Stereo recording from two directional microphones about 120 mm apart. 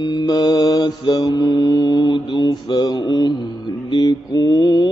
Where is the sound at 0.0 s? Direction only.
35° left (ahead or behind).